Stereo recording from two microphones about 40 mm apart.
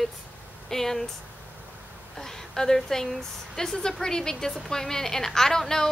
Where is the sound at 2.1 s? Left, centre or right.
Centre.